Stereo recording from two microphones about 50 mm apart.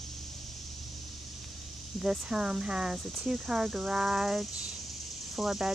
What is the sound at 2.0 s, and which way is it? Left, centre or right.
Speech, centre.